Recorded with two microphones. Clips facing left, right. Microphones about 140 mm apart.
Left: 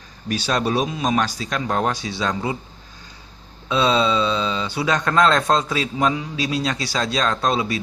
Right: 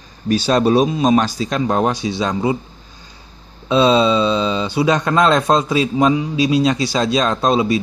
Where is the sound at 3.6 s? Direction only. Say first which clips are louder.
Right 6 dB; 25° right (ahead or behind).